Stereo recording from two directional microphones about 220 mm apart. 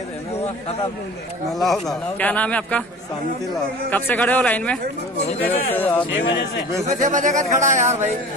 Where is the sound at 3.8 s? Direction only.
10° left (ahead or behind).